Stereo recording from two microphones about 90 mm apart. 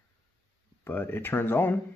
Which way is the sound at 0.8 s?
25° left (ahead or behind).